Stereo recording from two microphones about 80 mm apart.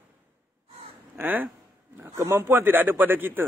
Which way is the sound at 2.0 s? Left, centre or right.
Right.